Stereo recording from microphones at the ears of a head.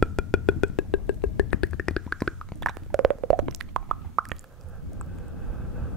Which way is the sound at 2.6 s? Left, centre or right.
Right.